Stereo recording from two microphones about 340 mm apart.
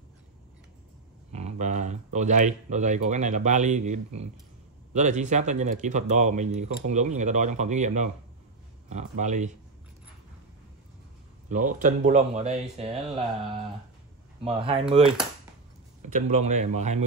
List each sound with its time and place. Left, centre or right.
1.3 s a sound: centre
2.1 s speech: right
11.4 s speech: right
14.4 s speech: centre